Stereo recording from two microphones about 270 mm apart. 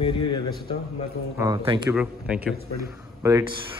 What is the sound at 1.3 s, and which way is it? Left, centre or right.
Speech, centre.